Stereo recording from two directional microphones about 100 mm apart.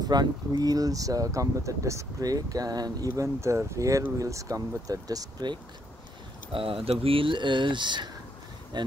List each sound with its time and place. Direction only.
0.0 s speech: 45° right (ahead or behind)
6.5 s speech: 70° right (ahead or behind); by 8.9 s 45° right (ahead or behind)